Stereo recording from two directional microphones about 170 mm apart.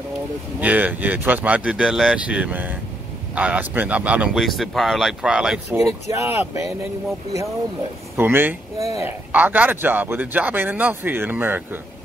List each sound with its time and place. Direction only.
0.6 s speech: 10° right (ahead or behind)
5.8 s speech: 20° right (ahead or behind)
8.2 s speech: 10° right (ahead or behind)